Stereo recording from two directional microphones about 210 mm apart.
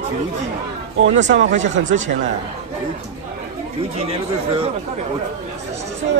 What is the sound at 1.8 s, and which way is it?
Speech, 35° right (ahead or behind).